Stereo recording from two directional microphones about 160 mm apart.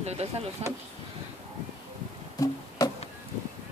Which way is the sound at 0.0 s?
40° right (ahead or behind).